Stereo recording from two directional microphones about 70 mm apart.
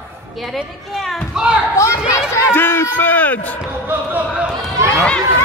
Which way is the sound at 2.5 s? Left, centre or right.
Left.